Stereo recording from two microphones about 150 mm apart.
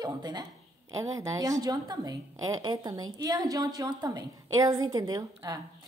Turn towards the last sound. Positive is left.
turn(degrees=-25)  # may be behind; listen again after turning